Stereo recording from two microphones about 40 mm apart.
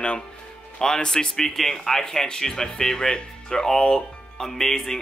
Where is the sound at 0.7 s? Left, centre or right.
Centre.